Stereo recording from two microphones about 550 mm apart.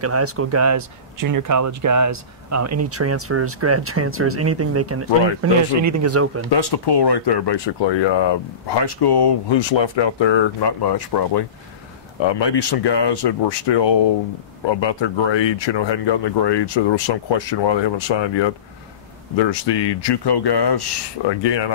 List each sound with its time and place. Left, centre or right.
0.0 s speech: right
6.5 s speech: left